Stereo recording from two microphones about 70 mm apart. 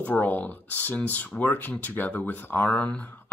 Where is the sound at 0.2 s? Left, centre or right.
Left.